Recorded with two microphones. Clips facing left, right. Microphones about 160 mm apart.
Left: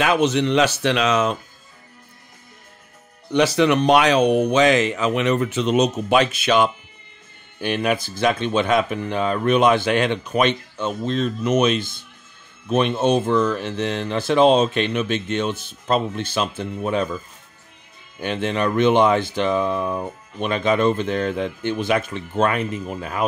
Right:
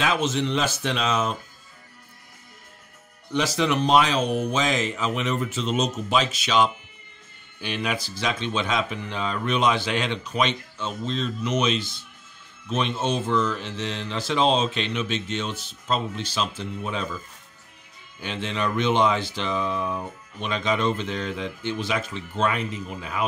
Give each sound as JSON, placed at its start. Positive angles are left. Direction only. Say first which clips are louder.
{"t": 0.0, "sound": "speech", "louder": "left 6 dB", "side_deg": 65}
{"t": 3.3, "sound": "speech", "louder": "left 7 dB", "side_deg": 65}
{"t": 18.2, "sound": "speech", "louder": "left 6 dB", "side_deg": 55}